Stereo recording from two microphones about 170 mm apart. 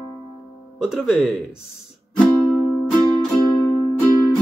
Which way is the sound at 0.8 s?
5° right (ahead or behind).